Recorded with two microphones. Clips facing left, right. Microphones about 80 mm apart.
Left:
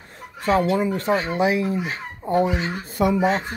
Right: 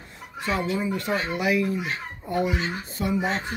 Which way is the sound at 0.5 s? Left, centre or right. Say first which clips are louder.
Left 7 dB; left.